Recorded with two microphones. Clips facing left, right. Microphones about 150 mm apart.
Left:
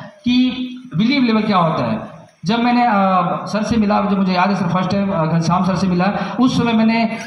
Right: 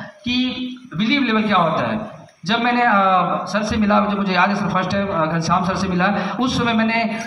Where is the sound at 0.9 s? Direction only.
25° left (ahead or behind).